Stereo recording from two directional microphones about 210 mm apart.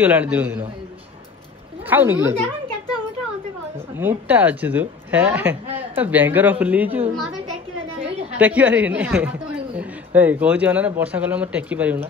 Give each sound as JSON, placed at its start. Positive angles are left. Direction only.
{"t": 0.0, "sound": "a man's voice", "side_deg": -10}
{"t": 1.9, "sound": "a man's voice", "side_deg": -10}
{"t": 3.7, "sound": "a man's voice", "side_deg": -10}
{"t": 8.0, "sound": "a sound", "side_deg": -30}
{"t": 8.4, "sound": "a man's voice", "side_deg": -5}